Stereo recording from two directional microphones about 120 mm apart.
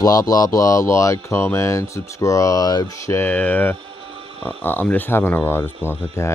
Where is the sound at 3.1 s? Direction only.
15° left (ahead or behind).